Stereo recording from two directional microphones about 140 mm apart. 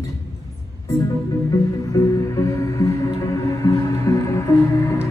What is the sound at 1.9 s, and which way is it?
Music, 25° left (ahead or behind).